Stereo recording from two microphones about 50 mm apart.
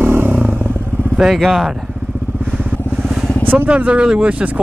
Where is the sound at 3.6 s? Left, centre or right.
Right.